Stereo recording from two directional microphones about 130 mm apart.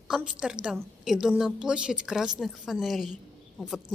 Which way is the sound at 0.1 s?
5° right (ahead or behind).